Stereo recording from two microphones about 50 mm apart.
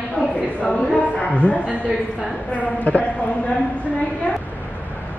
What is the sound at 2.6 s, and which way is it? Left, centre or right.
Speech, left.